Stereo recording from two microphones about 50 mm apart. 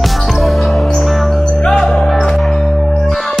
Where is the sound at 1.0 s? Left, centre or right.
Centre.